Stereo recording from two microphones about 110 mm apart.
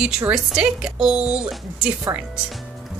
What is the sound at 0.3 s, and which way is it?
Speech, 5° right (ahead or behind).